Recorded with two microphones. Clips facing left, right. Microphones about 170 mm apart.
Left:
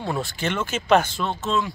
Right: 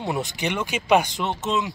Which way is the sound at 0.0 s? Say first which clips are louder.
Even; 15° right (ahead or behind).